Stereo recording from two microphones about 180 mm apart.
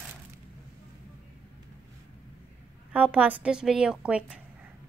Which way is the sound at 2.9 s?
10° right (ahead or behind).